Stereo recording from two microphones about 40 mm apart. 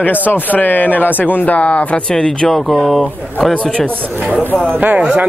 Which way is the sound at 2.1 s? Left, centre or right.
Centre.